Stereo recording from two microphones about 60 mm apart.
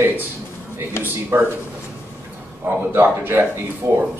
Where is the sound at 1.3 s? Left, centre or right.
Right.